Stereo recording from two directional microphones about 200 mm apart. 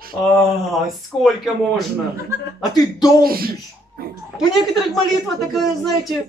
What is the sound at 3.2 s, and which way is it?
Speech, 50° right (ahead or behind).